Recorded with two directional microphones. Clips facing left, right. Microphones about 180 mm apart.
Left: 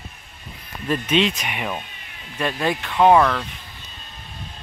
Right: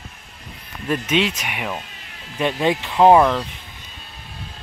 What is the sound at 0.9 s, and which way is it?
Speech, 5° right (ahead or behind).